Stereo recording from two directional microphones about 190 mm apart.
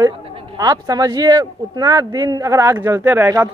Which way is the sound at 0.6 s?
20° right (ahead or behind).